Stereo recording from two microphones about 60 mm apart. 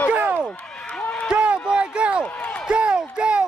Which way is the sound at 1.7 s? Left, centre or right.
Centre.